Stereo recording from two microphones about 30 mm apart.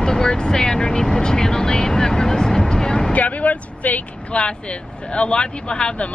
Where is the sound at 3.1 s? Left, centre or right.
Left.